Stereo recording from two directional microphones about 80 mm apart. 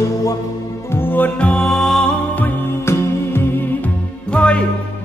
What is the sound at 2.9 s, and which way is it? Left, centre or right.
Music, left.